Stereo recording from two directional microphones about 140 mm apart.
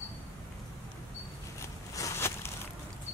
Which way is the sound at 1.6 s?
20° left (ahead or behind).